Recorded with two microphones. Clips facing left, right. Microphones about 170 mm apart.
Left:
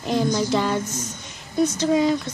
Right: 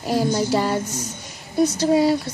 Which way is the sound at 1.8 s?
35° right (ahead or behind).